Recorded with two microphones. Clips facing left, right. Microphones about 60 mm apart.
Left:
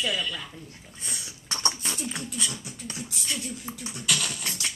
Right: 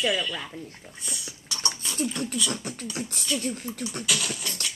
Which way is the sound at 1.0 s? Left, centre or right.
Left.